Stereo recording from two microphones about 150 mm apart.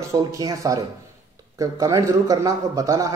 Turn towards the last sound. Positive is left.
turn(degrees=-20)  # may be behind; listen again after turning